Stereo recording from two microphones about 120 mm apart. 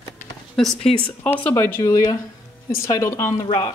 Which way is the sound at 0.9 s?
60° left (ahead or behind).